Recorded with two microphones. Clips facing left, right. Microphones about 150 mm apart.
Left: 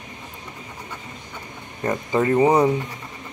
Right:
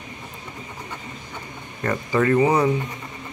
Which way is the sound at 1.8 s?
20° left (ahead or behind).